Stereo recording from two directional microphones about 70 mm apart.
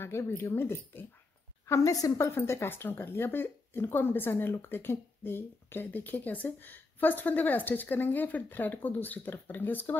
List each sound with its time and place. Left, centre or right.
0.0 s speech: left
1.7 s a woman's voice: left
2.2 s speech: left